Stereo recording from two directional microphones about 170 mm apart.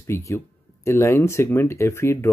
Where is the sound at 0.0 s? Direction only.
15° left (ahead or behind).